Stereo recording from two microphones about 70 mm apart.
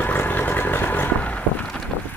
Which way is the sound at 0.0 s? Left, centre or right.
Left.